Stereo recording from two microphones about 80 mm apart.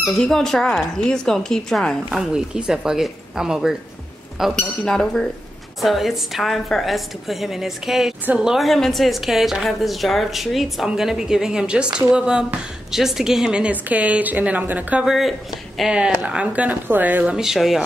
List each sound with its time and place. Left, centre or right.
0.2 s a woman's voice: centre
2.0 s a woman's voice: centre
4.6 s a woman's voice: centre
8.6 s a woman's voice: centre
15.0 s a woman's voice: centre